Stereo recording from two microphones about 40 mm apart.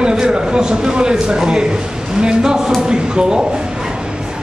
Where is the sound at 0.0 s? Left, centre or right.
Right.